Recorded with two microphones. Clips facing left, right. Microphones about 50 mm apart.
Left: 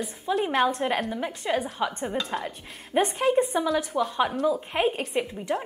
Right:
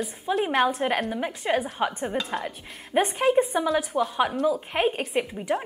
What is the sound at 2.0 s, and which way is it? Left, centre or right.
A woman's voice, centre.